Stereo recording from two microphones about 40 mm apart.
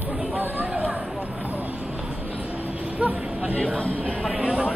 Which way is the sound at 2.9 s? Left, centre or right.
Right.